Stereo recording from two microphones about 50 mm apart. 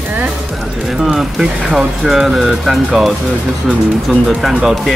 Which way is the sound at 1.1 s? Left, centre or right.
Centre.